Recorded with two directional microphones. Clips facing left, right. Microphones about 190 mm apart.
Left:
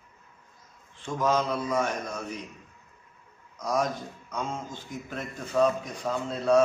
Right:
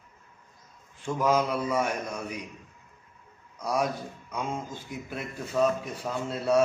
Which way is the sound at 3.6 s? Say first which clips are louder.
Even; 10° right (ahead or behind).